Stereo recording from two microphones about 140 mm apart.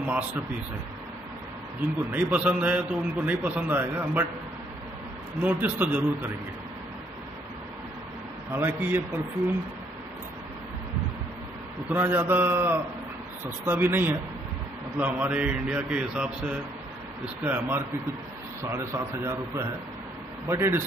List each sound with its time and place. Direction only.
0.0 s a man's voice: 10° right (ahead or behind)
2.1 s a man's voice: 10° right (ahead or behind)
5.4 s a man's voice: 10° right (ahead or behind)
8.5 s a man's voice: 15° right (ahead or behind)
11.9 s a man's voice: 15° right (ahead or behind)
20.4 s a man's voice: 20° right (ahead or behind)